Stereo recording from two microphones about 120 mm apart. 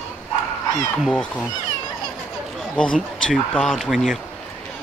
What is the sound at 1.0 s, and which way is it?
Speech, 10° left (ahead or behind).